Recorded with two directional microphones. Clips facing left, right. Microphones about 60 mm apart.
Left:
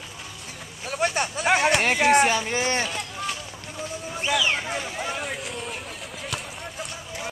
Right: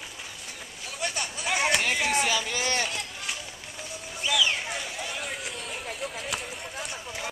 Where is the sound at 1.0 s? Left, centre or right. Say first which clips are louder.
Left 8 dB; left.